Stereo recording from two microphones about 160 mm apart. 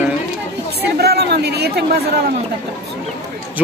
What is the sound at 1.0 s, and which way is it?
Speech, 90° right.